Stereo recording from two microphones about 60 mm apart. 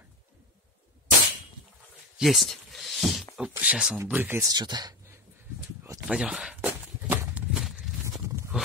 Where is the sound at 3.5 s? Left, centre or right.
Right.